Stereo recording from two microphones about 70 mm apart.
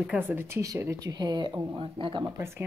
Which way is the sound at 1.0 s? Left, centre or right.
Right.